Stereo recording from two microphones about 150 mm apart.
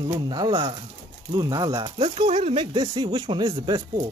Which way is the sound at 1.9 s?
40° right (ahead or behind).